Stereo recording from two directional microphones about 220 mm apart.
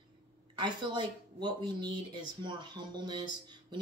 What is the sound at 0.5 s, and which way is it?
Speech, 20° right (ahead or behind).